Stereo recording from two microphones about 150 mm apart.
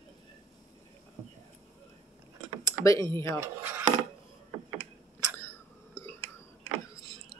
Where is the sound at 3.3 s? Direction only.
15° right (ahead or behind).